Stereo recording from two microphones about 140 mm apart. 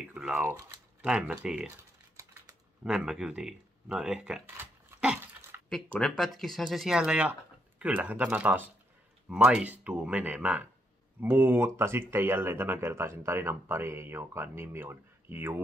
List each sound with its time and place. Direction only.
0.1 s speech: 10° right (ahead or behind)
1.0 s speech: 5° right (ahead or behind)
2.8 s a sound: 5° right (ahead or behind)
5.9 s speech: 5° left (ahead or behind); by 15.5 s 15° right (ahead or behind)